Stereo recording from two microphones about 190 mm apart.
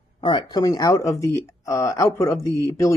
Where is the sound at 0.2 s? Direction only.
25° left (ahead or behind).